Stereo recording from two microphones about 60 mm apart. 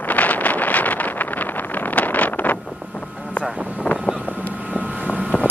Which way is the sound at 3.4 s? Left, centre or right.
Left.